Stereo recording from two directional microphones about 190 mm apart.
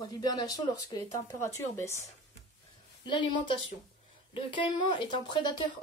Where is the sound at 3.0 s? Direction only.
25° left (ahead or behind).